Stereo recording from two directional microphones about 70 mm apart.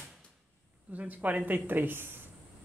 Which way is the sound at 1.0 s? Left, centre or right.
Right.